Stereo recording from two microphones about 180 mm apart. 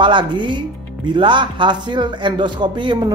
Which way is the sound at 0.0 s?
25° right (ahead or behind).